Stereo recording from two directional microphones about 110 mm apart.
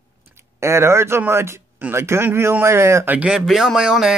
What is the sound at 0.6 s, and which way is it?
Speech, 25° right (ahead or behind).